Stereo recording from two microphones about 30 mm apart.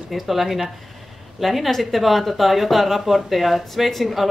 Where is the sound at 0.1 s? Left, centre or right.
Centre.